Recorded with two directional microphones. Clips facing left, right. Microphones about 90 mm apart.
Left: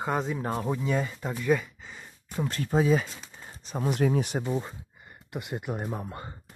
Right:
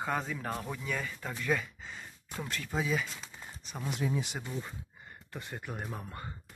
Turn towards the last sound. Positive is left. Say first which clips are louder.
# left 6 dB
turn(degrees=20)  # may be behind; listen again after turning